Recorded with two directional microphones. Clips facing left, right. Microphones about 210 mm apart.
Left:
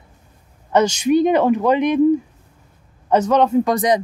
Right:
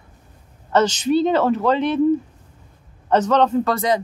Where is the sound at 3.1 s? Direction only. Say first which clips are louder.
Left 2 dB; 10° left (ahead or behind).